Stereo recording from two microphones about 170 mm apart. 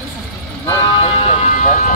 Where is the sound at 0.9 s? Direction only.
30° left (ahead or behind); by 1.9 s 50° left (ahead or behind).